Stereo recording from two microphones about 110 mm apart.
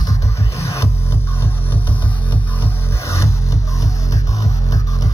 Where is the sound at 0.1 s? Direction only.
25° left (ahead or behind).